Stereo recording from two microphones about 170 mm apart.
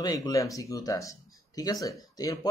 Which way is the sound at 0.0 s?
20° left (ahead or behind).